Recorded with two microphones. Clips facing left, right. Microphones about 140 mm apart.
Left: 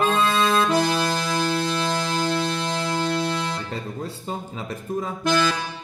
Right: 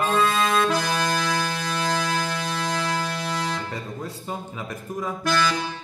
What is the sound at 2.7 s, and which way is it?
Music, 25° left (ahead or behind).